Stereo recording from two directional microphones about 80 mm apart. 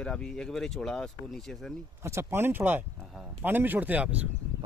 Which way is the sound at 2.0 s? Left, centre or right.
Right.